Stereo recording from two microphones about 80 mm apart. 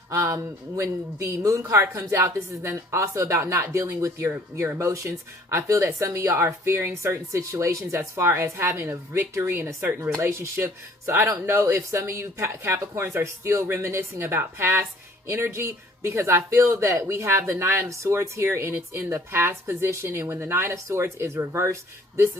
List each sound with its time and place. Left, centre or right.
0.1 s speech: right